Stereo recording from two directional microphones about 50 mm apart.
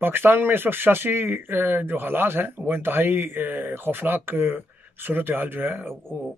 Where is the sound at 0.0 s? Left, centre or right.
Right.